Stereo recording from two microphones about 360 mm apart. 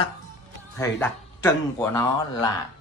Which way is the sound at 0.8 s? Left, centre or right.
Centre.